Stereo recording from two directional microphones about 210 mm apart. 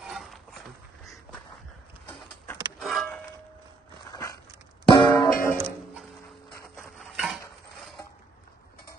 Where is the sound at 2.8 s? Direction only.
Centre (ahead or behind).